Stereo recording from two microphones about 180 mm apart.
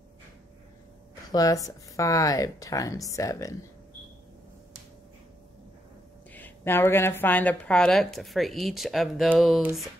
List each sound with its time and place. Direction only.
1.3 s speech: 20° left (ahead or behind)
6.3 s a woman's voice: 10° left (ahead or behind); by 9.7 s 5° right (ahead or behind)